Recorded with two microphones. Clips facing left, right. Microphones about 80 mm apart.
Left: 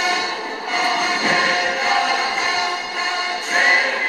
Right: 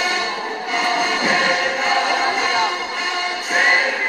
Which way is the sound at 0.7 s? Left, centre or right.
Centre.